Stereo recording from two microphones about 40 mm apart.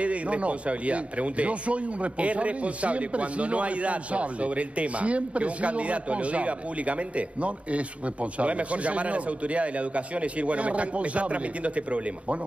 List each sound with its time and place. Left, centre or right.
0.0 s speech: right